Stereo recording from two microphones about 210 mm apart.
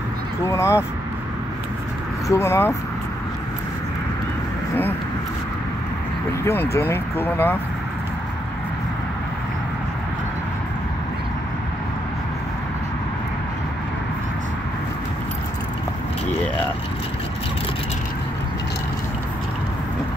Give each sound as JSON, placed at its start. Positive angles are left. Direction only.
{"t": 0.5, "sound": "speech", "side_deg": 10}
{"t": 2.2, "sound": "speech", "side_deg": 15}
{"t": 6.4, "sound": "speech", "side_deg": 10}